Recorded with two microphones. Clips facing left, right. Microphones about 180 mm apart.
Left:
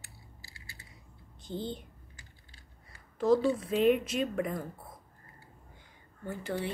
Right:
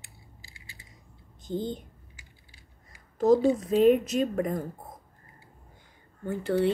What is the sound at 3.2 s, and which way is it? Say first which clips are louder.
A woman's voice: right 5 dB; 40° right (ahead or behind).